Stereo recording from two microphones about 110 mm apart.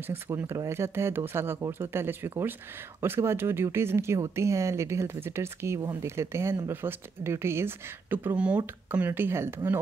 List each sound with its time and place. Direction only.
0.0 s speech: 20° right (ahead or behind)